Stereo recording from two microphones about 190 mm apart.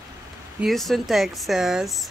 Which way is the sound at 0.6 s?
Centre (ahead or behind).